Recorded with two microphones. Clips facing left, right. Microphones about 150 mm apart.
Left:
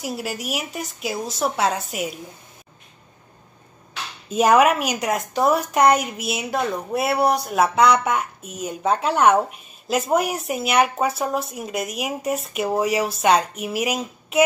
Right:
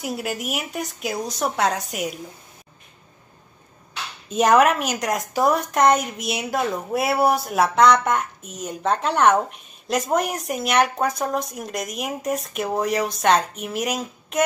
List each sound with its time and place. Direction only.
0.0 s a woman's voice: centre (ahead or behind)
4.3 s a woman's voice: 5° left (ahead or behind)